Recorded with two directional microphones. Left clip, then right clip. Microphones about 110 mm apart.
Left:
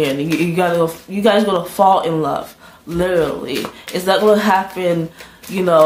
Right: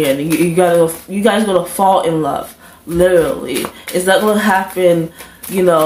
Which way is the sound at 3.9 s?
15° left (ahead or behind).